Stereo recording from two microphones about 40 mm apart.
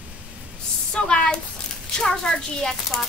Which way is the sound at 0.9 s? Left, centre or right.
Left.